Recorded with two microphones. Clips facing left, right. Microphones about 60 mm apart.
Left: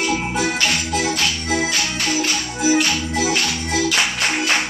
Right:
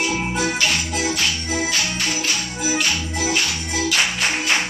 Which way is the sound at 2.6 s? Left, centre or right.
Left.